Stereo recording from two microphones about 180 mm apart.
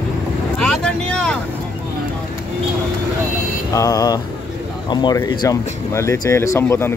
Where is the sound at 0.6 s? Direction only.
5° left (ahead or behind).